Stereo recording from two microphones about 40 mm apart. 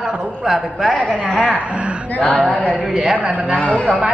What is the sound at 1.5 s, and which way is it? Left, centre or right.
Speech, right.